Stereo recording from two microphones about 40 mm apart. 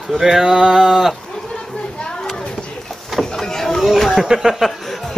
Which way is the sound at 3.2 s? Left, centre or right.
Centre.